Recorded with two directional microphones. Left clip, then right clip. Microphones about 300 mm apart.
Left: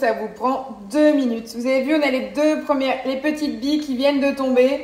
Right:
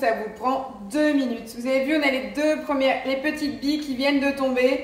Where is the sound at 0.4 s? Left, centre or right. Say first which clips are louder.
Left 3 dB; centre.